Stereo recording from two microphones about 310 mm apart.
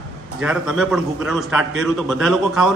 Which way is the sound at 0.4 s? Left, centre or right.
Centre.